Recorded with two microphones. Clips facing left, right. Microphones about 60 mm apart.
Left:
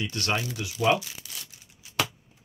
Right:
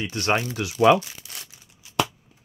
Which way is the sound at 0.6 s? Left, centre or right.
Right.